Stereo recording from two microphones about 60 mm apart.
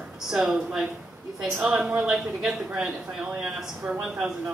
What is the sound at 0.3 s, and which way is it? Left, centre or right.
A man's voice, centre.